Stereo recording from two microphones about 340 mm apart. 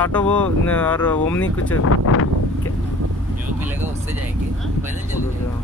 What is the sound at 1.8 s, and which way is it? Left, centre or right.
Wind, left.